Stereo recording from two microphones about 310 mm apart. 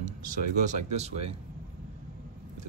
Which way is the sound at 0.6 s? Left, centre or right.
Right.